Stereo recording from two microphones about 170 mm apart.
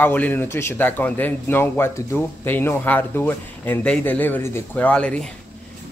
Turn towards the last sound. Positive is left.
turn(degrees=5)  # may be behind; listen again after turning